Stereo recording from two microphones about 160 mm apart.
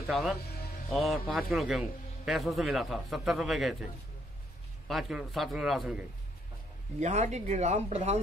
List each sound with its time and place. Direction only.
0.1 s a man's voice: centre (ahead or behind)
4.8 s a man's voice: centre (ahead or behind)
7.0 s speech: 45° right (ahead or behind)